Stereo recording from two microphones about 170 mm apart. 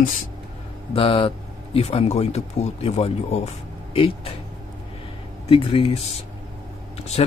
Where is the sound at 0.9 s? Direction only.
35° left (ahead or behind).